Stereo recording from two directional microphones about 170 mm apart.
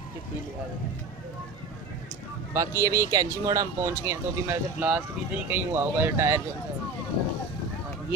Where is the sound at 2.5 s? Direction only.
20° right (ahead or behind).